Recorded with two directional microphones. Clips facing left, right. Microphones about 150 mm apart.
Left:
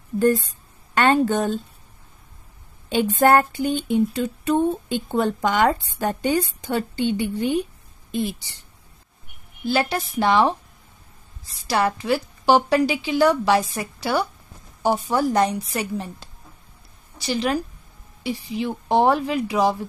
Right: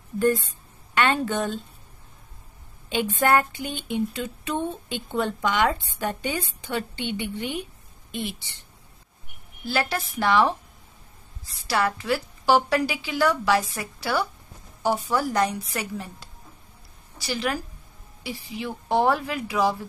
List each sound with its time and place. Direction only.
0.2 s speech: 35° left (ahead or behind)
2.9 s a sound: 40° left (ahead or behind)
9.7 s a woman's voice: 20° left (ahead or behind)
11.6 s a woman's voice: 20° left (ahead or behind)